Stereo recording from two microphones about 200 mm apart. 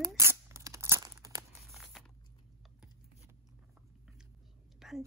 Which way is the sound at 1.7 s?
Centre (ahead or behind).